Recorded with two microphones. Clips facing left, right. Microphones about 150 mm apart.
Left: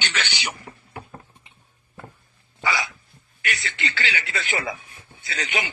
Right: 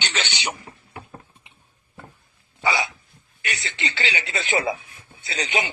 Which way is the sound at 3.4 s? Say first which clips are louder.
Left 1 dB; 25° right (ahead or behind).